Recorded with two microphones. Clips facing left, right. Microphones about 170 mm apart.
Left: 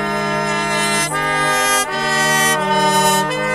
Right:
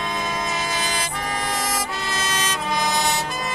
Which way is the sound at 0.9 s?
85° left.